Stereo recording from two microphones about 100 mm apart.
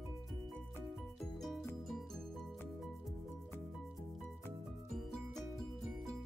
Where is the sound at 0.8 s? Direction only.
Centre (ahead or behind).